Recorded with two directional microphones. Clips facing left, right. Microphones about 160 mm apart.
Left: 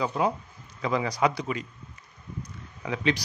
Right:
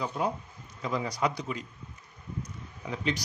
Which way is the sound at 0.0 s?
90° left.